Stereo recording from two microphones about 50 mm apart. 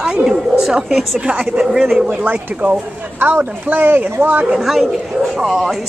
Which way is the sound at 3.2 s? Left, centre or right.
Right.